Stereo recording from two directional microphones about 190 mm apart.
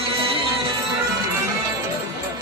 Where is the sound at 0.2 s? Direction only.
30° right (ahead or behind).